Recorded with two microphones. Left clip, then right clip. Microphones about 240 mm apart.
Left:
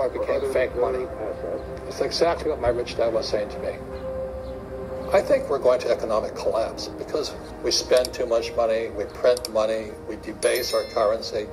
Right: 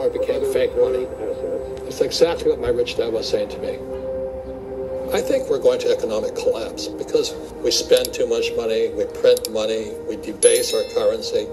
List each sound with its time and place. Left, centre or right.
0.2 s speech: centre
5.1 s speech: centre